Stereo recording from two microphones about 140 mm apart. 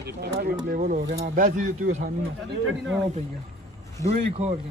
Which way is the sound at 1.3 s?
65° right (ahead or behind).